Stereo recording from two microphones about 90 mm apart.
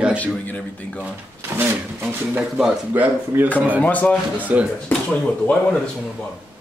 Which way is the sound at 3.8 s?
15° left (ahead or behind).